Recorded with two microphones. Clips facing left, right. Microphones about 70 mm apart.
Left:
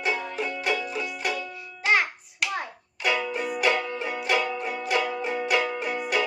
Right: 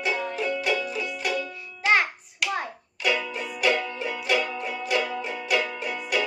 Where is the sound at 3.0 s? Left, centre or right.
Left.